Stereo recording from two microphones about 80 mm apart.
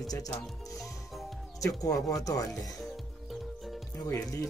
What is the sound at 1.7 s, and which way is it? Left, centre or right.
Speech, left.